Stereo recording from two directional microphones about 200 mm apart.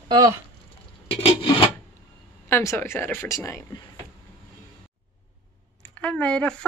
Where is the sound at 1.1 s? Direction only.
30° left (ahead or behind).